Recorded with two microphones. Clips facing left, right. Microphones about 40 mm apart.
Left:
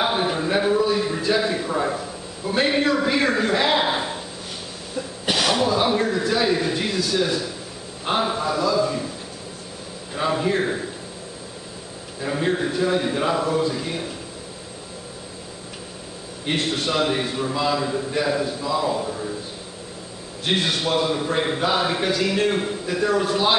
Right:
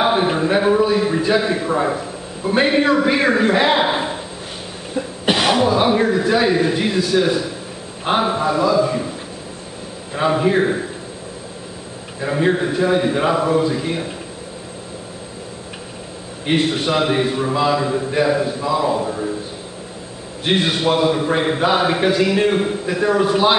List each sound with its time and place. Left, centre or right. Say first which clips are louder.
0.0 s a man's voice: right 5 dB; centre
10.1 s a man's voice: right 5 dB; centre
12.2 s a man's voice: right 5 dB; centre
16.4 s a man's voice: right 6 dB; centre
20.4 s a man's voice: right 5 dB; centre